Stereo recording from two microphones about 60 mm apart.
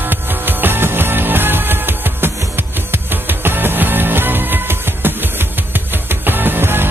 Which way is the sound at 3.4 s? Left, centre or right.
Right.